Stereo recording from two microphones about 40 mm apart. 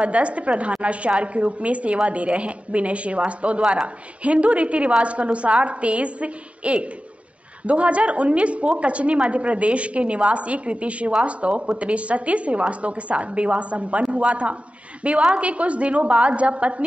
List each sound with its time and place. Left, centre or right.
0.0 s a woman's voice: right